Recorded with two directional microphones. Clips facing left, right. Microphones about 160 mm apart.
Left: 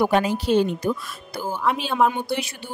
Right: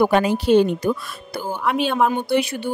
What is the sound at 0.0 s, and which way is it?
A woman's voice, 65° right (ahead or behind).